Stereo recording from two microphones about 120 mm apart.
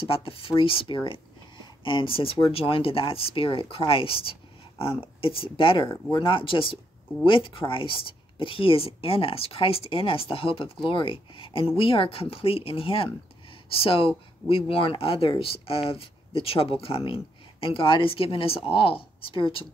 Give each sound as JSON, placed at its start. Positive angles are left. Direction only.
{"t": 0.0, "sound": "speech", "side_deg": 50}